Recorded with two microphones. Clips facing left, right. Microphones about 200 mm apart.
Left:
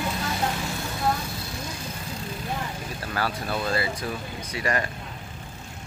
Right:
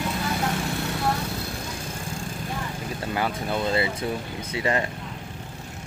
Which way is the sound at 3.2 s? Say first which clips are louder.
Right 1 dB; 20° right (ahead or behind).